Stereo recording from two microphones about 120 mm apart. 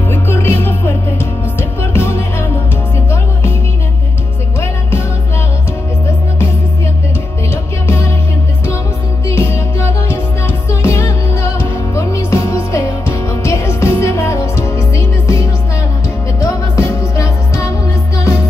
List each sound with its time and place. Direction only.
0.1 s music: 20° left (ahead or behind)
7.8 s music: 20° left (ahead or behind)
9.3 s music: 20° left (ahead or behind)